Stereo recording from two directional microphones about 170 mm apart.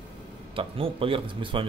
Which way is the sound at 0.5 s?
30° right (ahead or behind).